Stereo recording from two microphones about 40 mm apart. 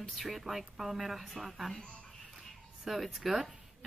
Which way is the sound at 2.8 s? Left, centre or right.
Centre.